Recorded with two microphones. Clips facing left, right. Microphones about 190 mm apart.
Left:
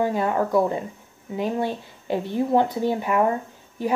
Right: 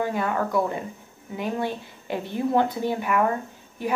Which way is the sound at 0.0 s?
30° left (ahead or behind).